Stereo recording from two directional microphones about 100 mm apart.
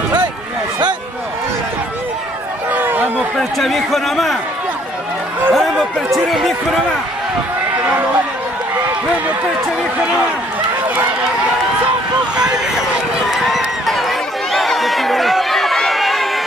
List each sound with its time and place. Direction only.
2.7 s chatter: 20° right (ahead or behind)
3.3 s speech: centre (ahead or behind)
5.5 s speech: centre (ahead or behind)
13.3 s a sound: centre (ahead or behind)